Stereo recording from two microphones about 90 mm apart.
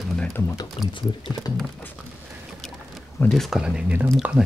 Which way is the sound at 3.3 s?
5° left (ahead or behind).